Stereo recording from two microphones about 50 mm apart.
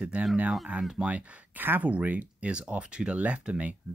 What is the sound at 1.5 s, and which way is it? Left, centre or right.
Speech, right.